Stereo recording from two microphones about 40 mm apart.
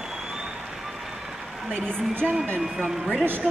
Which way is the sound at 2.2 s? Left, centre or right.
Centre.